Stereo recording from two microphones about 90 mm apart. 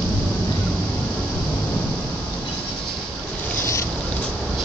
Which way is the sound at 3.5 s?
30° left (ahead or behind).